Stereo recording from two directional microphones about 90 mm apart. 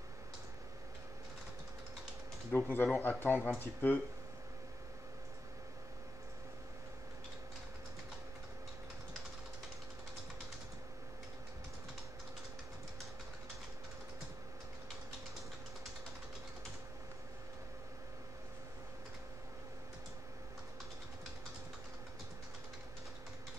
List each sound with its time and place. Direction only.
2.5 s speech: 20° left (ahead or behind)